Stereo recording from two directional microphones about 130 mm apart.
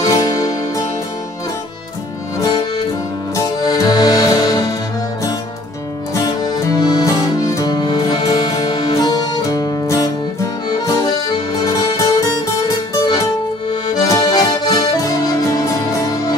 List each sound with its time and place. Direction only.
0.0 s music: 30° left (ahead or behind)
2.3 s accordion: 30° left (ahead or behind)
3.3 s music: 30° left (ahead or behind)
6.1 s music: 30° left (ahead or behind)
10.7 s accordion: 30° left (ahead or behind)
11.5 s music: 30° left (ahead or behind)
13.9 s accordion: 30° left (ahead or behind)